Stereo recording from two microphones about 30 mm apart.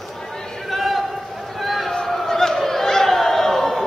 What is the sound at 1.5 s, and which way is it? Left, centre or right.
Run, centre.